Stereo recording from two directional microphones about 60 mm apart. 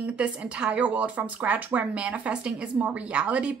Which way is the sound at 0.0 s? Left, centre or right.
Right.